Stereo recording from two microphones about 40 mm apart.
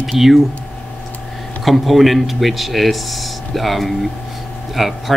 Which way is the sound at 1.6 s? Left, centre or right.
Centre.